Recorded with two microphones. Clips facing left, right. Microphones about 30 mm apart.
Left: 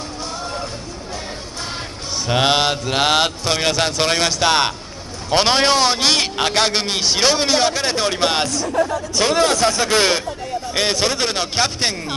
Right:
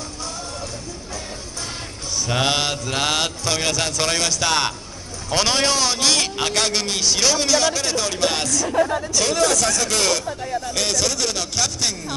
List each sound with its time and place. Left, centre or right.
2.1 s a man's voice: left